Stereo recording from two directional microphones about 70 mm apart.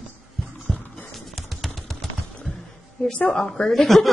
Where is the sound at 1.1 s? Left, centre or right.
Centre.